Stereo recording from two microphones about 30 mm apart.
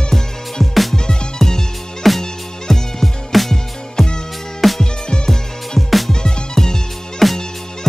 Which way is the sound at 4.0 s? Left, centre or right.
Centre.